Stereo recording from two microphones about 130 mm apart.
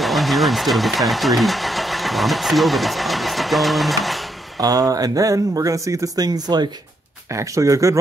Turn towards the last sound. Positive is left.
turn(degrees=-25)  # may be behind; listen again after turning